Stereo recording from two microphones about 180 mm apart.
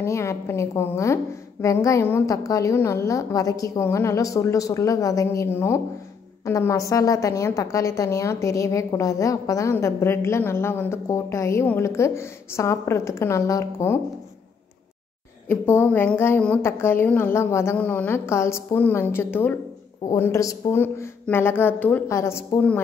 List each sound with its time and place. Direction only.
0.0 s a woman's voice: 15° left (ahead or behind)
15.4 s a woman's voice: 10° left (ahead or behind)